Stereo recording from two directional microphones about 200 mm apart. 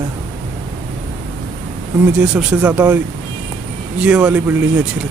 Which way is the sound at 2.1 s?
5° right (ahead or behind).